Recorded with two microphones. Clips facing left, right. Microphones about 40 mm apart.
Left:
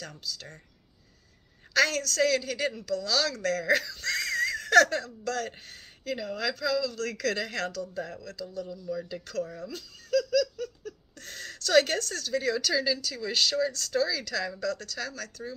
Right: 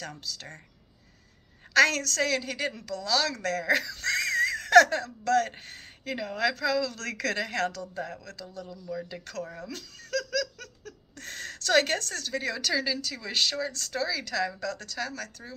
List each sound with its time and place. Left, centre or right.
0.0 s speech: right
1.7 s a woman's voice: right
3.8 s giggle: right; by 5.0 s centre
5.0 s a woman's voice: right
7.2 s a woman's voice: right
9.7 s laughter: right
11.1 s a woman's voice: right